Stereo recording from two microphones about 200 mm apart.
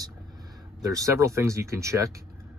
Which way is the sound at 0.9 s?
15° right (ahead or behind).